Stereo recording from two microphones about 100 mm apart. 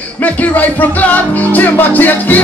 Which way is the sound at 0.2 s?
15° left (ahead or behind).